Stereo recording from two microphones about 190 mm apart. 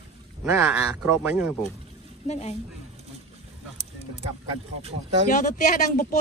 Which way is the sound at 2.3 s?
35° left (ahead or behind).